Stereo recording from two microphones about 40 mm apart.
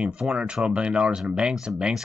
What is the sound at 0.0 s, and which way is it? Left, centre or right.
Speech, right.